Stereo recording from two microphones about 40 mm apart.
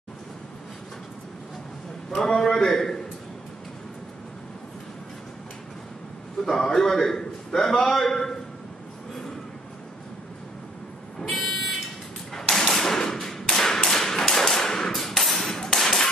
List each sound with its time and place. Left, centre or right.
2.0 s a man's voice: centre
6.4 s a man's voice: centre
11.3 s car alarm: centre
12.4 s a sound: centre
14.9 s hammer: centre